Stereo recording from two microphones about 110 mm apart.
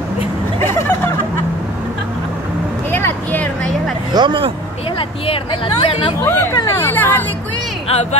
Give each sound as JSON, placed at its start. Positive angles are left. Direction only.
{"t": 0.6, "sound": "hubbub", "side_deg": 25}
{"t": 2.9, "sound": "a sound", "side_deg": 20}
{"t": 4.1, "sound": "speech", "side_deg": -45}
{"t": 4.9, "sound": "speech", "side_deg": 55}
{"t": 6.2, "sound": "speech", "side_deg": 20}
{"t": 7.9, "sound": "speech", "side_deg": 85}